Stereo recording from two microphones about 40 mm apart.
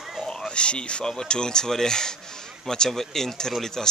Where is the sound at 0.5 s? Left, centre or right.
Left.